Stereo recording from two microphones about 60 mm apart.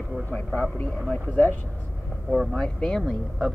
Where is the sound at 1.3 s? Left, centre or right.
Left.